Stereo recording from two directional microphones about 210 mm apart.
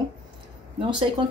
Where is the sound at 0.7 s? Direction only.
25° right (ahead or behind).